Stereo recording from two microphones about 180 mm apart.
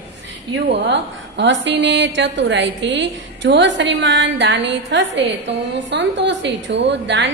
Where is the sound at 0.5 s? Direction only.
70° right (ahead or behind).